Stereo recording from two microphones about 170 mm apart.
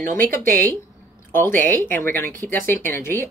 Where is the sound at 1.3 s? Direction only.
10° left (ahead or behind).